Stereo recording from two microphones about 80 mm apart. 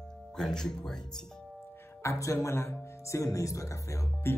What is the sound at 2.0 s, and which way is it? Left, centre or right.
Speech, left.